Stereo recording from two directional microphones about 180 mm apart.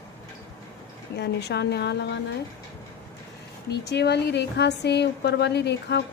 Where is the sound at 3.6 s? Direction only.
65° left (ahead or behind).